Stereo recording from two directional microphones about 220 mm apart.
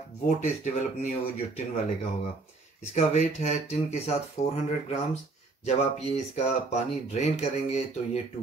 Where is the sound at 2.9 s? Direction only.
30° left (ahead or behind).